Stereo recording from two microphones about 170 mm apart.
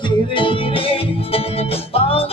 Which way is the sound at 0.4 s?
30° left (ahead or behind).